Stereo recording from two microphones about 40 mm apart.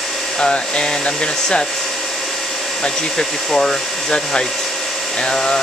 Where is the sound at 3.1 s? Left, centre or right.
Centre.